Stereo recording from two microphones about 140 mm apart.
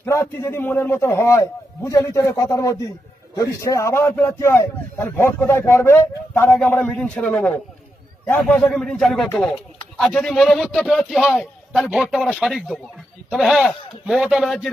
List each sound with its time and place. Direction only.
0.0 s a man's voice: 20° left (ahead or behind); by 14.7 s centre (ahead or behind)